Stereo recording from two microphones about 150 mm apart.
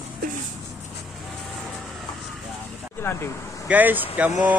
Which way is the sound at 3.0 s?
15° left (ahead or behind).